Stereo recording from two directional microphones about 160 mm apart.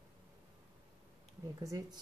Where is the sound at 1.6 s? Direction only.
20° right (ahead or behind).